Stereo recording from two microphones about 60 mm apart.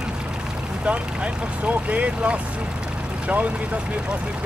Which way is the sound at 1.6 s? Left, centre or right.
Right.